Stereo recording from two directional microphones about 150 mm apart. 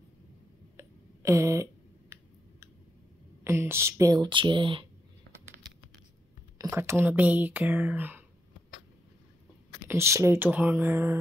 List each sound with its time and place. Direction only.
0.7 s a sound: 20° right (ahead or behind)
3.4 s speech: 15° right (ahead or behind); by 4.8 s 35° right (ahead or behind)
6.6 s speech: 20° right (ahead or behind)
9.8 s speech: 20° right (ahead or behind)